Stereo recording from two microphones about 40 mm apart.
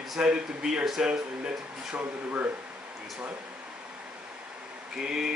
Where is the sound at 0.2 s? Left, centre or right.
Right.